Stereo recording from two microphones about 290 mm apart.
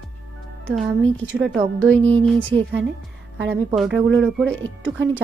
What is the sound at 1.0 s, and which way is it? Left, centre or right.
Speech, right.